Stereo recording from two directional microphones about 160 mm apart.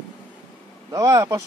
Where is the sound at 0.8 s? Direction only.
25° right (ahead or behind).